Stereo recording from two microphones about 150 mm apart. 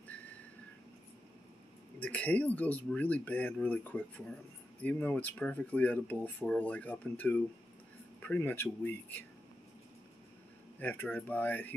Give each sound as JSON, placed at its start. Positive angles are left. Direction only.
{"t": 0.1, "sound": "a sound", "side_deg": 10}
{"t": 2.0, "sound": "speech", "side_deg": 10}
{"t": 10.8, "sound": "speech", "side_deg": 15}